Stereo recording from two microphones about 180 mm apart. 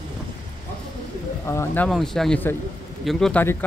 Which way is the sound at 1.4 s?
15° left (ahead or behind).